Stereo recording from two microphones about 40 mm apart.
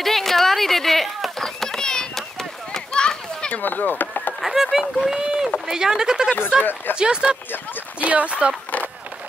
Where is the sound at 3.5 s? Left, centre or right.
Left.